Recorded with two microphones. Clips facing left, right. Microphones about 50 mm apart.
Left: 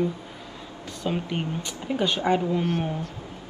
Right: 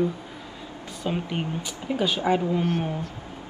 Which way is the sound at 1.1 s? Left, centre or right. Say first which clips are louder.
Even; centre.